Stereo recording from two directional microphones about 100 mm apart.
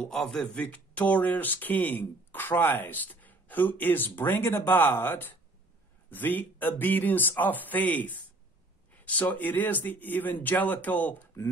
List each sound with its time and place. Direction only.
0.0 s speech: 5° left (ahead or behind)